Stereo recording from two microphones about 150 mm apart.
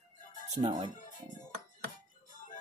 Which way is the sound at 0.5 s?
40° right (ahead or behind).